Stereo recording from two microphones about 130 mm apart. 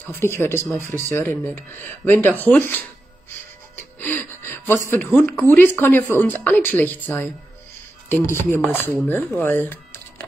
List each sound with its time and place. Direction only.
0.0 s speech: 15° left (ahead or behind)
3.7 s a sound: 15° left (ahead or behind)
5.4 s speech: 15° left (ahead or behind)